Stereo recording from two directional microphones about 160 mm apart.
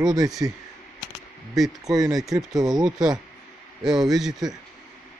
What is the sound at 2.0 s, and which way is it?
Speech, centre (ahead or behind).